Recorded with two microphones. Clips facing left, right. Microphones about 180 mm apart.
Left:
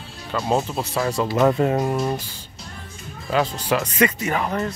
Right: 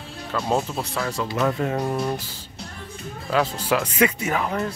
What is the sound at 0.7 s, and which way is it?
Speech, 25° left (ahead or behind).